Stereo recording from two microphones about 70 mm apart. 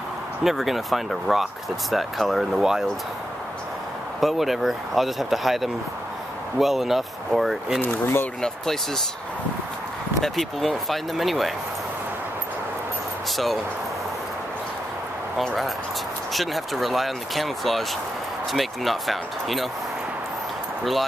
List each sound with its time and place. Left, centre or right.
0.4 s speech: centre
4.2 s speech: centre
7.8 s speech: left
8.4 s speech: centre
10.2 s speech: centre
15.3 s speech: centre